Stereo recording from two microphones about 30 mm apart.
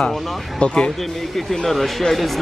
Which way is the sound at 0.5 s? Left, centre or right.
Left.